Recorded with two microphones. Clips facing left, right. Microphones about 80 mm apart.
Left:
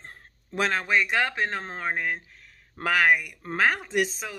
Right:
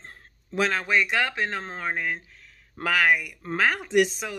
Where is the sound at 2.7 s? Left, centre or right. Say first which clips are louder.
Even; left.